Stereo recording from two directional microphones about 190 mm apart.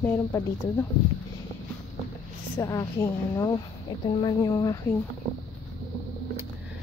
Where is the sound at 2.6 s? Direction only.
15° left (ahead or behind).